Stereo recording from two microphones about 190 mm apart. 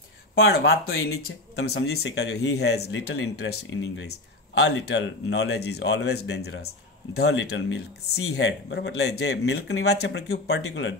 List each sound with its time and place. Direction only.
0.4 s speech: 55° left (ahead or behind)
0.8 s speech: 90° left; by 11.0 s 70° left (ahead or behind)